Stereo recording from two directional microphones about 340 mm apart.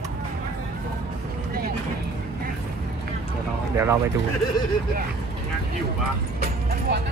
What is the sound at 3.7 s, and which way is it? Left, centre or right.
Speech, centre.